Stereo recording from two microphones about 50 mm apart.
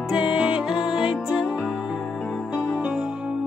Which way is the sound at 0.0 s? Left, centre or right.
Centre.